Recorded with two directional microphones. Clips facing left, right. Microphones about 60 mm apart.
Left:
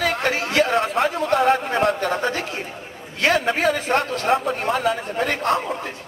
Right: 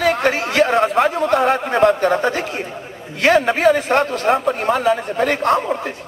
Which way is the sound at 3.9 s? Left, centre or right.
Right.